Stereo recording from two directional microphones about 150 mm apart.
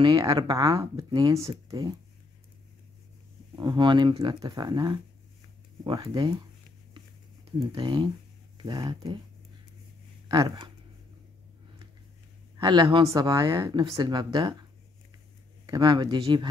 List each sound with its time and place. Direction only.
0.0 s speech: 25° right (ahead or behind)
3.5 s speech: 30° right (ahead or behind)
7.5 s speech: 30° right (ahead or behind)
10.2 s speech: 25° right (ahead or behind)
12.5 s speech: 30° right (ahead or behind)